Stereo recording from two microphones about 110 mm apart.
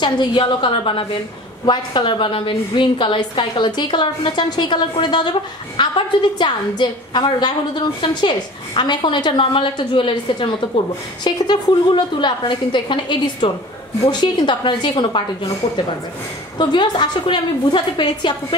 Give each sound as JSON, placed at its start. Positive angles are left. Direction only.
{"t": 0.0, "sound": "a woman's voice", "side_deg": 45}